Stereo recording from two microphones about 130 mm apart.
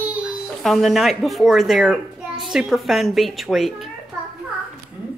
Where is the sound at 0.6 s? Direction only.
Centre (ahead or behind).